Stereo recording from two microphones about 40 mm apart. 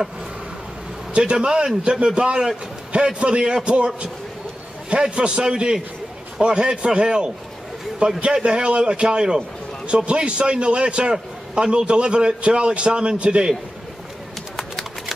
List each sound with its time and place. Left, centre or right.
1.3 s a man's voice: centre
8.3 s a man's voice: right